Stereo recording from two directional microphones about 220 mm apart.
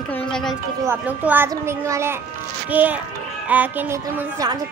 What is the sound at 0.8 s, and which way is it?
A child's voice, 5° right (ahead or behind).